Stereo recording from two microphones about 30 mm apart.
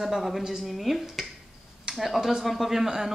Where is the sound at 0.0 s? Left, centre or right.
Centre.